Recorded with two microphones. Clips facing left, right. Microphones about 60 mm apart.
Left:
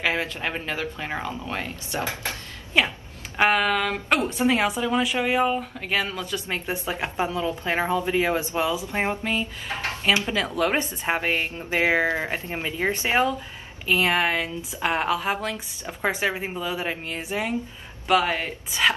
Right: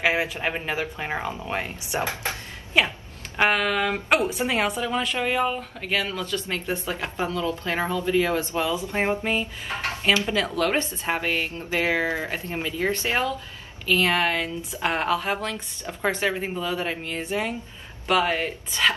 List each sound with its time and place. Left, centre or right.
0.0 s speech: centre
2.8 s speech: centre
9.1 s speech: centre
10.3 s speech: centre